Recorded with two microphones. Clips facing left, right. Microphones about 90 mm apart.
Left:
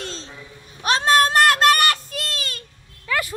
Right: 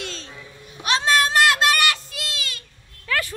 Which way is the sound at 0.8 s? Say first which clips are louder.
Left 3 dB; 45° left (ahead or behind).